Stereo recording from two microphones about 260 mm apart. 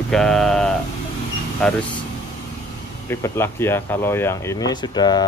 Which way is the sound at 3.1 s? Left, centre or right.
Centre.